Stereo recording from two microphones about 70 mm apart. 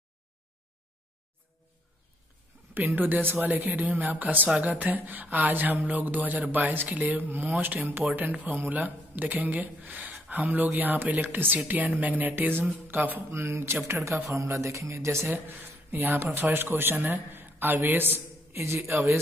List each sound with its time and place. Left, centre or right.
2.7 s speech: right
13.3 s speech: right
15.3 s speech: right